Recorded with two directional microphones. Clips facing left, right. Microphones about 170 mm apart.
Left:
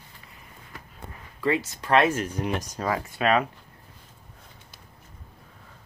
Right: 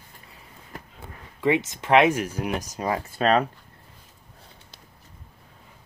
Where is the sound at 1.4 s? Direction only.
20° right (ahead or behind).